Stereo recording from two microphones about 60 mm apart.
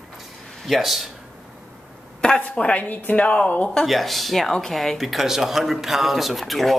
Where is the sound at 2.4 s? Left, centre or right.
Left.